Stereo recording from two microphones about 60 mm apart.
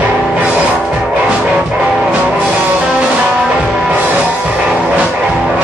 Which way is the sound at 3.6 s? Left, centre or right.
Centre.